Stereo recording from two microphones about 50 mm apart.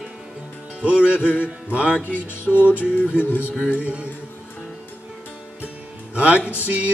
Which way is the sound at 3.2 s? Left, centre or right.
Left.